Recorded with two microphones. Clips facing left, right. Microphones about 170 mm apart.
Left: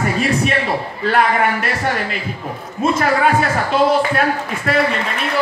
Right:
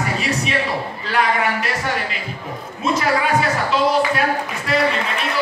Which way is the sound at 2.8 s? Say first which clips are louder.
Left 4 dB; 50° left (ahead or behind).